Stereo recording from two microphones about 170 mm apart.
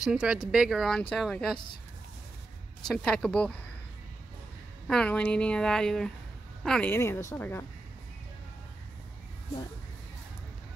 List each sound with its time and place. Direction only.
0.0 s speech: 5° right (ahead or behind)
2.9 s speech: 5° left (ahead or behind)
4.8 s a woman's voice: 5° left (ahead or behind)